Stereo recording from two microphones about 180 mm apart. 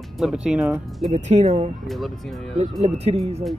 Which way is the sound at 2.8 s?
35° right (ahead or behind).